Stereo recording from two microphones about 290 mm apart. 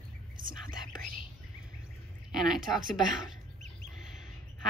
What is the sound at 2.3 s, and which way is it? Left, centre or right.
Speech, centre.